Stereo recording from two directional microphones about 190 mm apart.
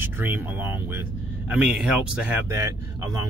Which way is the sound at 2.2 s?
15° right (ahead or behind).